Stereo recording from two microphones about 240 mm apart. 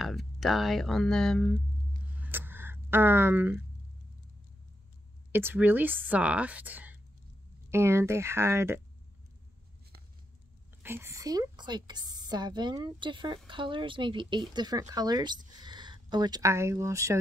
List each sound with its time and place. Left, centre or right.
0.0 s speech: centre
2.1 s a sound: centre
5.3 s speech: centre
10.8 s a woman's voice: centre